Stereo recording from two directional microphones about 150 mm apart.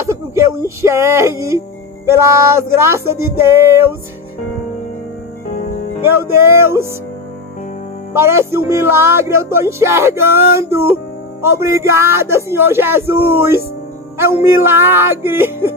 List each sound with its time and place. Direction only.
0.1 s a man's voice: 20° right (ahead or behind)
5.5 s music: 55° left (ahead or behind)
6.3 s a man's voice: 15° right (ahead or behind)
8.1 s a man's voice: 15° right (ahead or behind)